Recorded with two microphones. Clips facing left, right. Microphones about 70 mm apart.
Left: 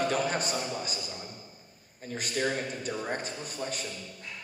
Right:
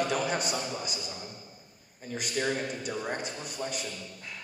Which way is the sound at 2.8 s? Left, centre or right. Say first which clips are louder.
Even; left.